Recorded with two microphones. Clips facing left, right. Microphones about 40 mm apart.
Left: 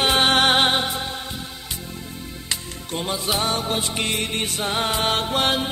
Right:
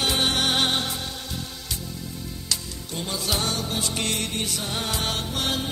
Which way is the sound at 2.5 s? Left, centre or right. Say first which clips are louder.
Left 3 dB; left.